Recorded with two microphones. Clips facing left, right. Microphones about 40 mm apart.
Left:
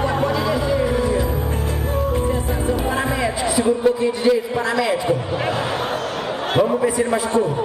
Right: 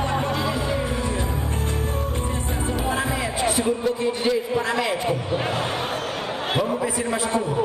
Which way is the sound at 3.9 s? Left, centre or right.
Centre.